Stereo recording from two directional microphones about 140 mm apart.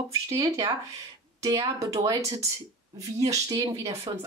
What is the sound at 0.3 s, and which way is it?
Speech, 25° right (ahead or behind).